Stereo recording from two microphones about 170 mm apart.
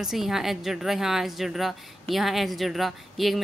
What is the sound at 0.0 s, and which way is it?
A woman's voice, centre (ahead or behind).